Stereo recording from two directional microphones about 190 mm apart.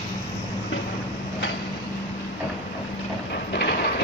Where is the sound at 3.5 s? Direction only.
60° left (ahead or behind).